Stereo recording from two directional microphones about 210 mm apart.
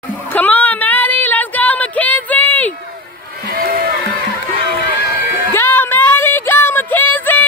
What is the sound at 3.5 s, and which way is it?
Music, 45° right (ahead or behind).